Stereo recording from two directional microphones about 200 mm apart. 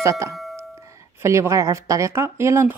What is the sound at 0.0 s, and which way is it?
Speech, 15° right (ahead or behind).